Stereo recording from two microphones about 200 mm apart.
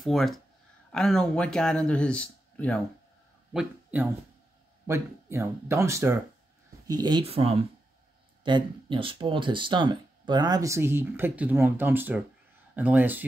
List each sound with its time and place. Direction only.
0.0 s speech: centre (ahead or behind)
3.5 s speech: 10° right (ahead or behind)